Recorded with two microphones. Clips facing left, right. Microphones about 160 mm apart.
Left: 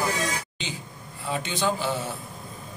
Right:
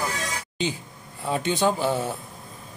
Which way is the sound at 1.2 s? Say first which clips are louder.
Right 4 dB; 45° right (ahead or behind).